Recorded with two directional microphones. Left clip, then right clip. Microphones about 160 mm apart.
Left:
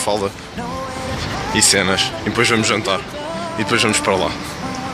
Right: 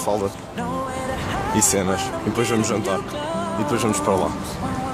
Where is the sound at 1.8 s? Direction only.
10° right (ahead or behind).